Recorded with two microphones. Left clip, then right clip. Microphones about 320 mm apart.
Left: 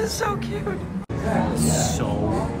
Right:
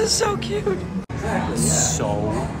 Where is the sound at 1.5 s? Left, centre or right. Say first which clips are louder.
Right 1 dB; centre.